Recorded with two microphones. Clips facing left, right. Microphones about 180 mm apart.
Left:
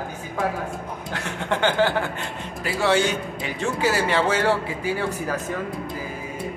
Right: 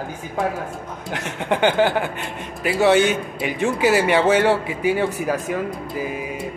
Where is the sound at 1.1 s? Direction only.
15° right (ahead or behind).